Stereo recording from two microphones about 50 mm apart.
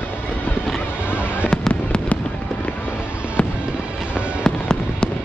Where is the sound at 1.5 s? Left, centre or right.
Left.